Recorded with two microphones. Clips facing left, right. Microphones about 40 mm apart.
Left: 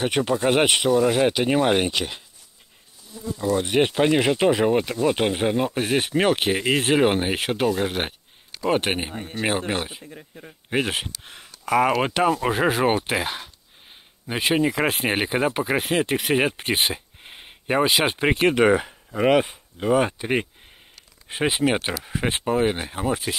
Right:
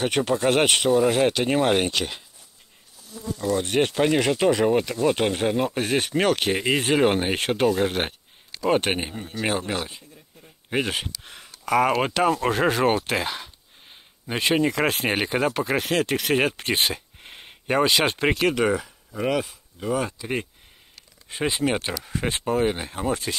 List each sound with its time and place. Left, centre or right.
0.0 s speech: centre
3.1 s speech: centre
6.5 s speech: centre
9.1 s a man's voice: left
10.7 s speech: centre
18.3 s speech: left
21.3 s speech: centre